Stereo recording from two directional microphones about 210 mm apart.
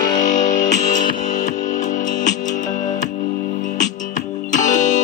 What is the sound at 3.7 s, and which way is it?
Music, 35° left (ahead or behind).